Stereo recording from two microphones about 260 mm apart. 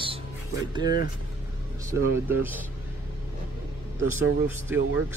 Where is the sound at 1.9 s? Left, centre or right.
Centre.